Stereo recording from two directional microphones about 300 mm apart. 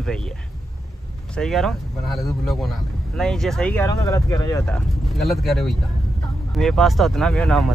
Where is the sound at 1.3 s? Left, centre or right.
Centre.